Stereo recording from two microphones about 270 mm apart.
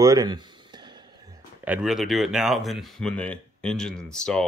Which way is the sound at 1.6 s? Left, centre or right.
Centre.